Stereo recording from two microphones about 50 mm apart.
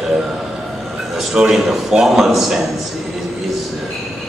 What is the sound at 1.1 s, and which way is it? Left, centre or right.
A man's voice, centre.